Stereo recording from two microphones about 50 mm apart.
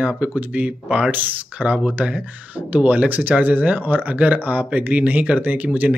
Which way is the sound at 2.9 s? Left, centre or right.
Right.